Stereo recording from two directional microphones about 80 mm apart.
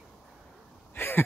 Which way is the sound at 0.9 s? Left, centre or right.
Left.